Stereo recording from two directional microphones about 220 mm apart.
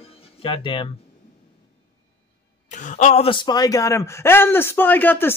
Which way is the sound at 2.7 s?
35° left (ahead or behind).